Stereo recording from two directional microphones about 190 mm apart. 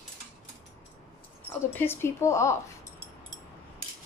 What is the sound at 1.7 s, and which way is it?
Speech, 10° left (ahead or behind).